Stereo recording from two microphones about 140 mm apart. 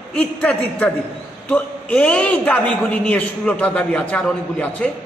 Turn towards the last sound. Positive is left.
turn(degrees=10)  # may be behind; listen again after turning